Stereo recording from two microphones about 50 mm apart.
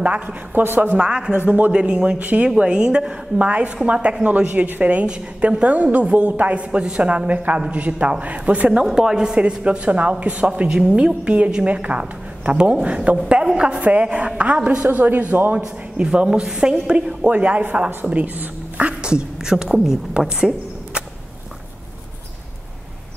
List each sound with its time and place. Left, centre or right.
0.0 s a woman's voice: right
0.9 s a woman's voice: right
1.3 s speech: right
1.7 s a woman's voice: centre
5.0 s a woman's voice: centre
8.8 s a woman's voice: centre
14.9 s speech: right
16.0 s a woman's voice: centre
19.0 s a woman's voice: centre